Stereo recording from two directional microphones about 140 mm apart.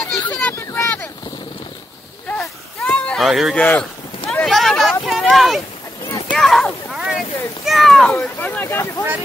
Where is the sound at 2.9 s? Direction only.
10° left (ahead or behind).